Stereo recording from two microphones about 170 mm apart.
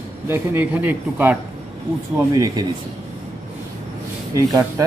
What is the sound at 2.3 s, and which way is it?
Speech, 20° right (ahead or behind).